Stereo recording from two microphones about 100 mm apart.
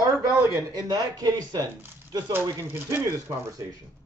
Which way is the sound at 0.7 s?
40° right (ahead or behind).